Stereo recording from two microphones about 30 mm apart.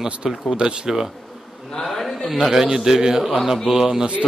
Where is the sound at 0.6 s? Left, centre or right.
Right.